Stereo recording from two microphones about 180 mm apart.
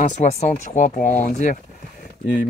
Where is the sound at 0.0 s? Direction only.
40° left (ahead or behind).